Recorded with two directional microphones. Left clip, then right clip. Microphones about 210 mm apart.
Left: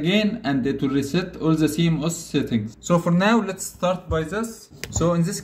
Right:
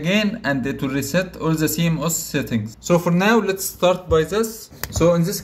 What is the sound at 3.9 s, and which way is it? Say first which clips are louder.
Speech: right 7 dB; 35° right (ahead or behind).